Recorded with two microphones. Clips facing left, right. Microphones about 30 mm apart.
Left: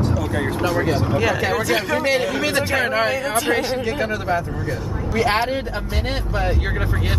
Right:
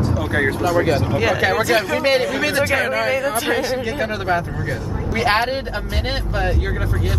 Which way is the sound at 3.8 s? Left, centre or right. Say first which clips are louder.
Even; centre.